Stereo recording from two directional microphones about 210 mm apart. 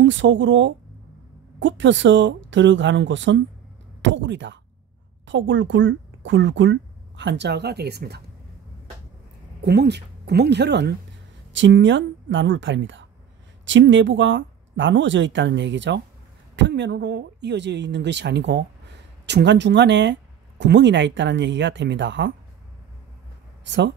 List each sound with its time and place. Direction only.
0.0 s speech: 60° right (ahead or behind)
9.6 s a woman's voice: 50° right (ahead or behind)